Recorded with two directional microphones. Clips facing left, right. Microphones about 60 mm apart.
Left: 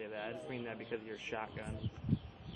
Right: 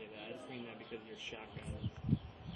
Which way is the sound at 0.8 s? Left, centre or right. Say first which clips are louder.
Left 6 dB; left.